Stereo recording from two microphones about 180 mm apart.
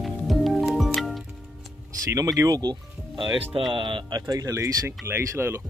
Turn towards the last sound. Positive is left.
turn(degrees=-15)  # may be behind; listen again after turning